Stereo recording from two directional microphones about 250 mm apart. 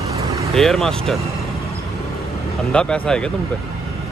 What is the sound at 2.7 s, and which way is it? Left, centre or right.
Speech, centre.